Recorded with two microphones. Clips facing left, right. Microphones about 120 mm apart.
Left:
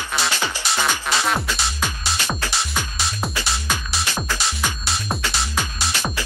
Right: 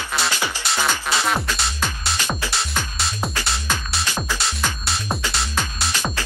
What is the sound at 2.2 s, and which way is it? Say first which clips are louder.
Music: even; 15° right (ahead or behind).